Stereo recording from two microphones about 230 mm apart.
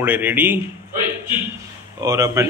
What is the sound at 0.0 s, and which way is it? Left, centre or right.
Speech, centre.